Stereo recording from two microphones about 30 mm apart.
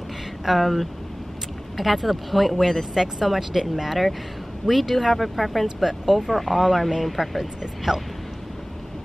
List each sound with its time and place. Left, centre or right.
0.5 s speech: centre
7.9 s speech: centre